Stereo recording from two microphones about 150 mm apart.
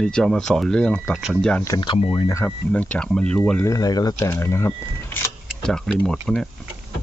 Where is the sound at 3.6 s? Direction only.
25° left (ahead or behind).